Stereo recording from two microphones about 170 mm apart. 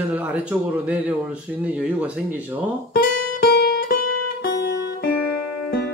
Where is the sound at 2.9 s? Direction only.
70° left (ahead or behind).